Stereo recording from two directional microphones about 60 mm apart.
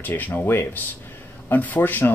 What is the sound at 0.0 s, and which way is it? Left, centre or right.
Speech, left.